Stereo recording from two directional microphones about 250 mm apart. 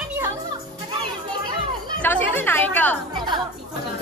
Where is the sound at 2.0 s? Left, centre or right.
Centre.